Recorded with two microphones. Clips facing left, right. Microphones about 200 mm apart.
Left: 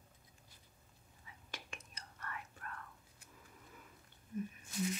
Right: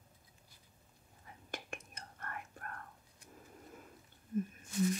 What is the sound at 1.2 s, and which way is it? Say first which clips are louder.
Whispering: right 6 dB; 50° right (ahead or behind).